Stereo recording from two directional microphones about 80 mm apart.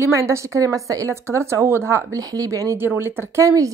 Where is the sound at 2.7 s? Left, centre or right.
Right.